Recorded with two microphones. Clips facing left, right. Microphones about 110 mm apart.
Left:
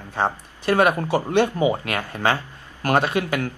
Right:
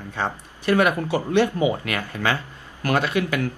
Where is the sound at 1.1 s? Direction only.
20° left (ahead or behind).